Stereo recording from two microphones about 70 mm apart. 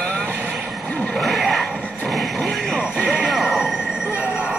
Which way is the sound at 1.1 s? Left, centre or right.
Centre.